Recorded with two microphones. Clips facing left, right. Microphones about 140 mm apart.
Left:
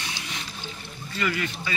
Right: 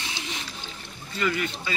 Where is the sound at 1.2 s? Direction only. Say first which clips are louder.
Right 1 dB; 20° right (ahead or behind).